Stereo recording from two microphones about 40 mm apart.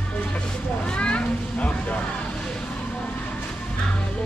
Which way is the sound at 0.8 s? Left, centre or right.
Left.